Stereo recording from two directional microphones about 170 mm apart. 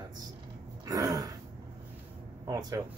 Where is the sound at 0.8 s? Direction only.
20° right (ahead or behind).